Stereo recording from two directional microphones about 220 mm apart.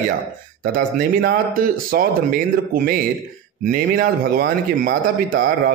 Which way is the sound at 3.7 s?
40° right (ahead or behind).